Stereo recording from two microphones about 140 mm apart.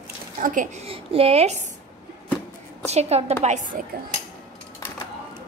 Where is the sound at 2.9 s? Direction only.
50° right (ahead or behind).